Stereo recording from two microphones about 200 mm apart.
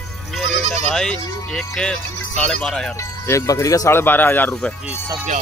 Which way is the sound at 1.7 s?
5° left (ahead or behind).